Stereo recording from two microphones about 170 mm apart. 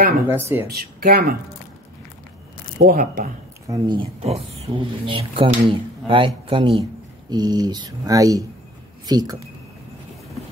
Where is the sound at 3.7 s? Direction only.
25° right (ahead or behind).